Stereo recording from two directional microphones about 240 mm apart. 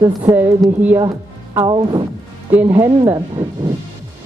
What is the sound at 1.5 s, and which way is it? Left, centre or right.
A woman's voice, centre.